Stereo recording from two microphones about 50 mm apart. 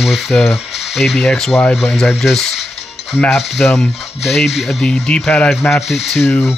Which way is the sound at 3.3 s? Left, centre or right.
Centre.